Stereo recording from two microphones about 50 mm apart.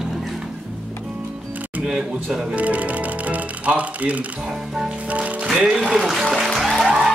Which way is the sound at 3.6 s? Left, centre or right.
Right.